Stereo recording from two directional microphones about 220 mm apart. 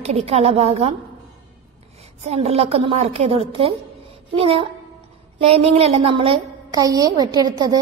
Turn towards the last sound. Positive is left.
turn(degrees=-15)  # may be behind; listen again after turning